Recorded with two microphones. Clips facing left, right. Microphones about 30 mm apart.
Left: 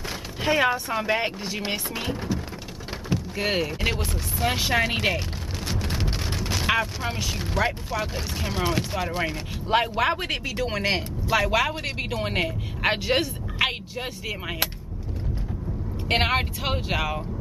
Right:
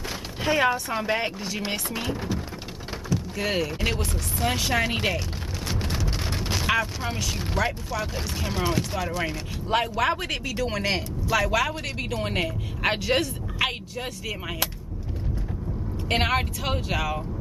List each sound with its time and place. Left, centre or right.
0.4 s speech: centre
3.3 s speech: centre
6.3 s a sound: centre
6.6 s speech: centre
16.1 s speech: centre